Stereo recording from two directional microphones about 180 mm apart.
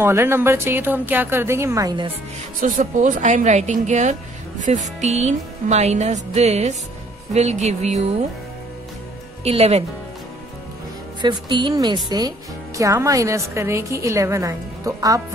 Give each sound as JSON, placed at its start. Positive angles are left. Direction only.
{"t": 0.0, "sound": "speech", "side_deg": -15}
{"t": 2.6, "sound": "a woman's voice", "side_deg": -45}
{"t": 9.4, "sound": "a woman's voice", "side_deg": -35}
{"t": 11.1, "sound": "speech", "side_deg": -25}